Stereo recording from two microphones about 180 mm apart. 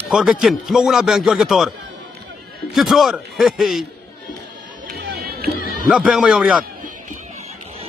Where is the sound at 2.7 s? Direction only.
Centre (ahead or behind).